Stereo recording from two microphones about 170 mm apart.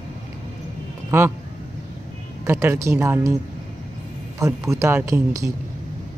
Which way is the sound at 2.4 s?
15° right (ahead or behind).